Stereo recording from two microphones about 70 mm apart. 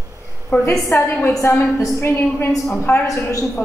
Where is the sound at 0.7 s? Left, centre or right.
Left.